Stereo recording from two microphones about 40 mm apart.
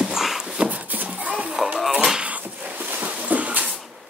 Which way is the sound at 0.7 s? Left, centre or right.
Right.